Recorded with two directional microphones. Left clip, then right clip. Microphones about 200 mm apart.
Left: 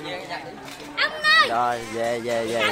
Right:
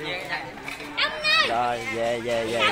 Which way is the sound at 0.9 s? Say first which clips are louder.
Left 4 dB; 45° left (ahead or behind).